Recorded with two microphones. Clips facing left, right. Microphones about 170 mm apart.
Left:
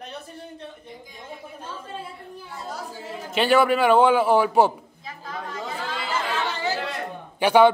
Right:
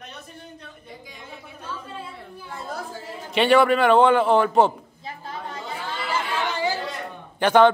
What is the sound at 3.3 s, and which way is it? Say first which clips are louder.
A man's voice: right 2 dB; centre (ahead or behind).